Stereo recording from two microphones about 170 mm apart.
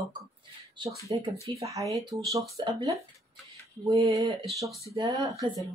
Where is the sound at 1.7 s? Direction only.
20° right (ahead or behind).